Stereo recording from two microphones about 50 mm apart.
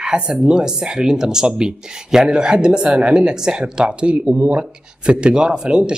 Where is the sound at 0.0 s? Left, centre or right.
Centre.